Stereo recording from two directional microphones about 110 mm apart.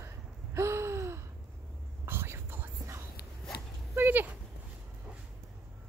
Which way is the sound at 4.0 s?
20° right (ahead or behind).